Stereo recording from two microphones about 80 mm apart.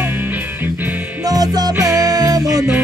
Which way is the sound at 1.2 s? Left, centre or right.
Right.